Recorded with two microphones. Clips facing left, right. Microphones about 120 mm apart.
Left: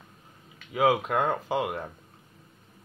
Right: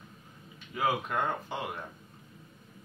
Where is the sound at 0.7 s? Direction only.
90° left.